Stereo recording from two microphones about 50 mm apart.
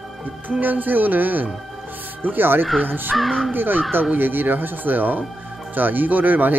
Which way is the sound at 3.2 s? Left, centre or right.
Centre.